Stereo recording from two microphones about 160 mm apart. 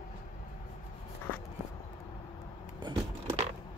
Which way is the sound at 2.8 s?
30° right (ahead or behind).